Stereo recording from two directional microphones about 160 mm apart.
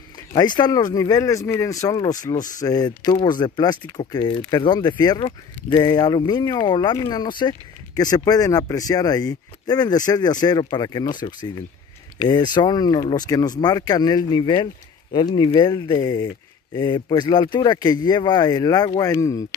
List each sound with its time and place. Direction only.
0.3 s speech: 25° left (ahead or behind)